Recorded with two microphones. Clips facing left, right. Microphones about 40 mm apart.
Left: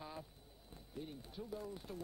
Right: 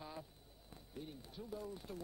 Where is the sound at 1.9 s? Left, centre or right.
Left.